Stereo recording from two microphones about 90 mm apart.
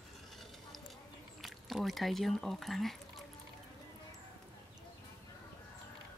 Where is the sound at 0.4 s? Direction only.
Centre (ahead or behind).